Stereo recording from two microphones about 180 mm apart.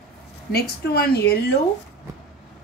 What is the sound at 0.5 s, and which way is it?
A woman's voice, 60° left (ahead or behind).